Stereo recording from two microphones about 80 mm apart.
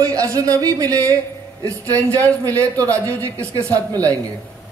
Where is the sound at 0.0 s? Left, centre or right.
Right.